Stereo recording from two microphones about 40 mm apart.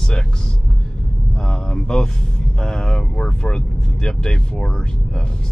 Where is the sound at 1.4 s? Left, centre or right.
Centre.